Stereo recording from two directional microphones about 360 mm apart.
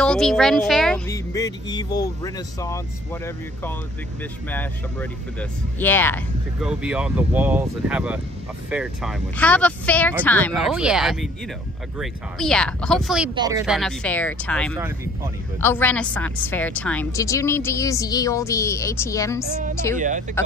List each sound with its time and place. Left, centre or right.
0.0 s a woman's voice: centre
5.4 s a woman's voice: centre
20.0 s speech: right